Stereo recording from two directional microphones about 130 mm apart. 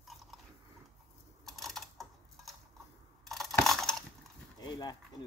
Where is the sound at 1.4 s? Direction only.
Centre (ahead or behind).